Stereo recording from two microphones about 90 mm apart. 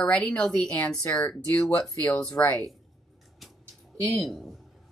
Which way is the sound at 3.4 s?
Centre (ahead or behind).